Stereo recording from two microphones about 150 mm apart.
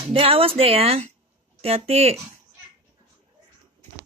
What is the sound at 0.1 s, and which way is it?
Speech, 40° right (ahead or behind).